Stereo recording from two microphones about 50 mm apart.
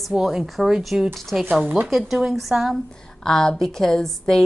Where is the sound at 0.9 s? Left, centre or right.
Centre.